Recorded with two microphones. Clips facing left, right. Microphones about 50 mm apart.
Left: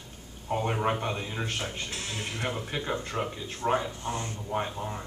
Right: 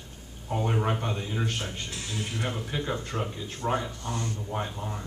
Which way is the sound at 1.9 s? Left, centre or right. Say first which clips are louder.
Even; left.